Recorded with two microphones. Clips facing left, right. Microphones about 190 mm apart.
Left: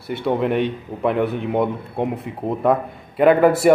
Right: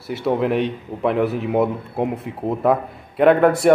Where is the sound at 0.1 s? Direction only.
Centre (ahead or behind).